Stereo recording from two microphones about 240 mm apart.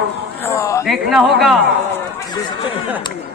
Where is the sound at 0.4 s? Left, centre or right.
Centre.